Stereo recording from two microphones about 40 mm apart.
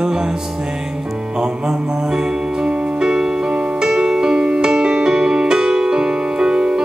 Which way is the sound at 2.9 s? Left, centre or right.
Centre.